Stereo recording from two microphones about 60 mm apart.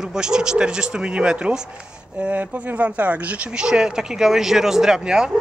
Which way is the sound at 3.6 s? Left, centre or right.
Centre.